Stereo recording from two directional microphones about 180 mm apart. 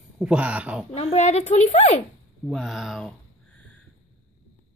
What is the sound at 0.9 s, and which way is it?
Speech, 35° left (ahead or behind).